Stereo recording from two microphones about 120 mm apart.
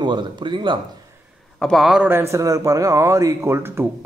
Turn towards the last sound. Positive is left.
turn(degrees=-20)  # may be behind; listen again after turning